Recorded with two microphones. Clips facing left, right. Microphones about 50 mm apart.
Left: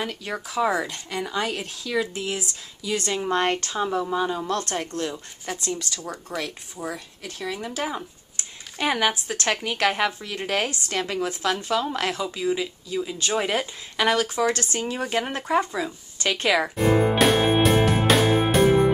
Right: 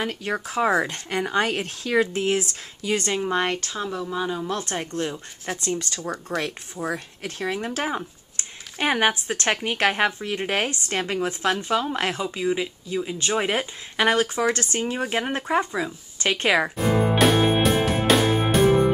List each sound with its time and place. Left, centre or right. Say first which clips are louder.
0.1 s speech: right 3 dB; right
3.2 s speech: left 1 dB; centre
5.6 s speech: right 4 dB; right
8.7 s speech: right 2 dB; right
15.0 s speech: even; centre
16.2 s speech: right 1 dB; right
17.0 s music: right 4 dB; centre